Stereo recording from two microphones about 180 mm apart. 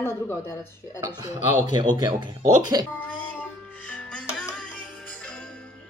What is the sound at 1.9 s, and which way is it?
Speech, 25° right (ahead or behind).